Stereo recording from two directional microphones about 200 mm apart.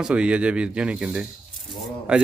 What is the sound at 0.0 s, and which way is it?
Speech, 5° right (ahead or behind).